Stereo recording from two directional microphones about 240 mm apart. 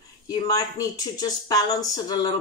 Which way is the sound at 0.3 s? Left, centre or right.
Centre.